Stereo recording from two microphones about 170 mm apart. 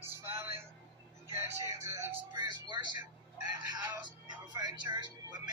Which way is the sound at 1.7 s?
20° right (ahead or behind).